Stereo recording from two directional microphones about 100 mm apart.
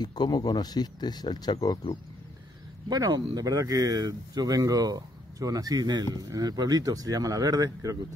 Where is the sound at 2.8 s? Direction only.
40° right (ahead or behind).